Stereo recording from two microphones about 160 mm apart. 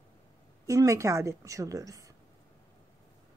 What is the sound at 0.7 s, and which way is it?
Speech, 20° right (ahead or behind).